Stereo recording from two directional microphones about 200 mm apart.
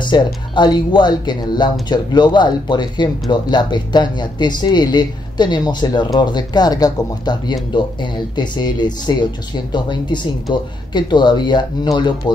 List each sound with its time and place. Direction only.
0.1 s speech: 20° left (ahead or behind)